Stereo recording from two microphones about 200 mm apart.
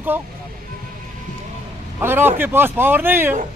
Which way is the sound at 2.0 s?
10° right (ahead or behind).